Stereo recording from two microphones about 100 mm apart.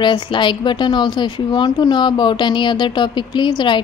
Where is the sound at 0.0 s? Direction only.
50° left (ahead or behind).